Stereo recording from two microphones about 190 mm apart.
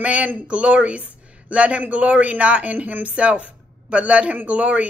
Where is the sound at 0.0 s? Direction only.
5° right (ahead or behind).